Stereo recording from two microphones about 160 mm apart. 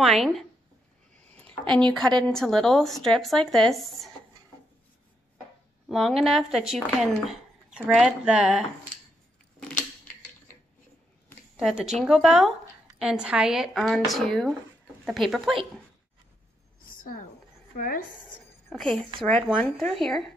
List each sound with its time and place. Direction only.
0.0 s speech: centre (ahead or behind)
1.2 s a sound: 10° left (ahead or behind)
2.0 s speech: 5° left (ahead or behind)
5.9 s speech: centre (ahead or behind)
9.6 s scissors: 5° left (ahead or behind)
11.5 s speech: 5° right (ahead or behind)
16.8 s a sound: 60° left (ahead or behind)
17.7 s speech: 60° left (ahead or behind)
18.7 s speech: 5° left (ahead or behind)